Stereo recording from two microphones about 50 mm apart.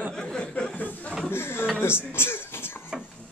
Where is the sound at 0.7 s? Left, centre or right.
Left.